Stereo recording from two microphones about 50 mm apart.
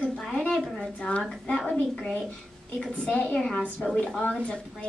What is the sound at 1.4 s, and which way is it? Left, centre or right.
A woman's voice, left.